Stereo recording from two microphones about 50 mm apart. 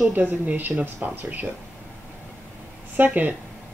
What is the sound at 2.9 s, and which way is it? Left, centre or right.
Speech, right.